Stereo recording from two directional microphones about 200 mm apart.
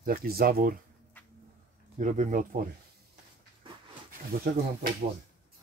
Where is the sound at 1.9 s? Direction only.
35° right (ahead or behind).